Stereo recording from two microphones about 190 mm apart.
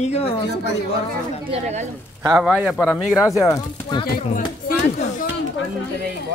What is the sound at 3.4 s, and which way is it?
Speech, 15° left (ahead or behind).